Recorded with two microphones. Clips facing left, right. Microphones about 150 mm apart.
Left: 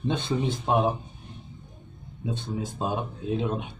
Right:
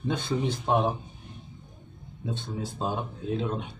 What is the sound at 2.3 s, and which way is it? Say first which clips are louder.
Speech: left 2 dB; 15° left (ahead or behind).